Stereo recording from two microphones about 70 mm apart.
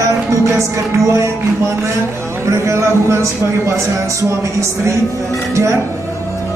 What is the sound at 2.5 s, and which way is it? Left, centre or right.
Speech, right.